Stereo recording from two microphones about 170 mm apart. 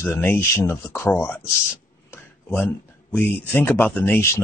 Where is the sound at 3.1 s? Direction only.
10° left (ahead or behind).